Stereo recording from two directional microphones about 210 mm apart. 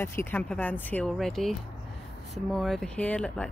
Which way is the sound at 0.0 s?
10° left (ahead or behind).